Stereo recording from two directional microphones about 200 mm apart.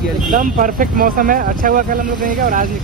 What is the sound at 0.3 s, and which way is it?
Speech, 40° right (ahead or behind).